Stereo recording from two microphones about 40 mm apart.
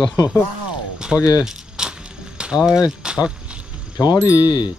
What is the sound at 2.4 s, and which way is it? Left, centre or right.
Speech, right.